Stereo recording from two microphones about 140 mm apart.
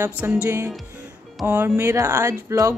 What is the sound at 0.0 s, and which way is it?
Speech, 10° right (ahead or behind).